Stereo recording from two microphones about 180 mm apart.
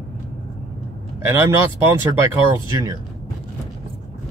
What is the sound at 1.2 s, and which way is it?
Speech, 15° right (ahead or behind).